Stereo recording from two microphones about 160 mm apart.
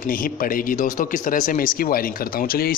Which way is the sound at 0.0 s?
60° left (ahead or behind).